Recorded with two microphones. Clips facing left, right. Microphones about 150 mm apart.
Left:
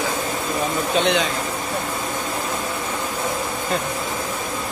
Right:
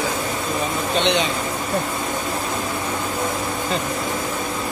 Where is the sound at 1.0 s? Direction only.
5° left (ahead or behind).